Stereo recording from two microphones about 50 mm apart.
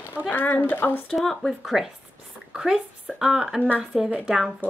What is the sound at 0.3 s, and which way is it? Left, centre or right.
Speech, left.